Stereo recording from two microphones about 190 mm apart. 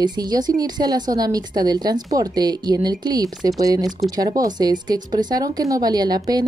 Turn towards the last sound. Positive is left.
turn(degrees=-20)  # may be behind; listen again after turning